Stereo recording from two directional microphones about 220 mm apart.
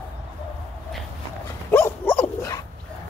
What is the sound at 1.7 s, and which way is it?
Dog, 10° left (ahead or behind).